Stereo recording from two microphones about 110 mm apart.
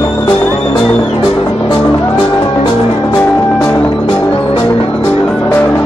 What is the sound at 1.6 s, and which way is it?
Music, 20° left (ahead or behind).